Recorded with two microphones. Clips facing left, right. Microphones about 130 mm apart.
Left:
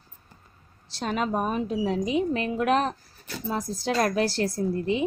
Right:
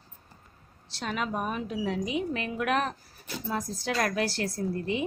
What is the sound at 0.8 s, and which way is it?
A woman's voice, 35° left (ahead or behind).